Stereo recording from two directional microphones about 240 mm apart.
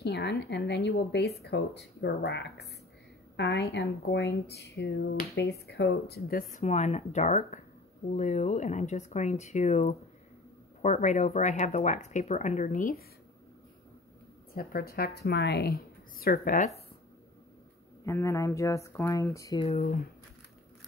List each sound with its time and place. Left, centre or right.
0.0 s speech: left
6.6 s speech: left
14.5 s a woman's voice: left
18.0 s speech: centre